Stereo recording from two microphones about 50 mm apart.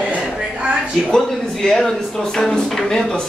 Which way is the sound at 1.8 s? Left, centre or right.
Centre.